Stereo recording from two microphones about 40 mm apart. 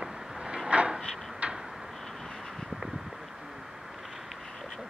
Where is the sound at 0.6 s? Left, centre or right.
Right.